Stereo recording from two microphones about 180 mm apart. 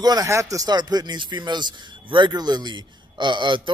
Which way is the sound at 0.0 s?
20° right (ahead or behind).